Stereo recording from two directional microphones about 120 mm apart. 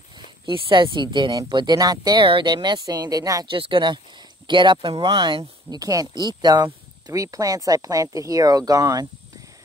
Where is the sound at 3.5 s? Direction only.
45° right (ahead or behind).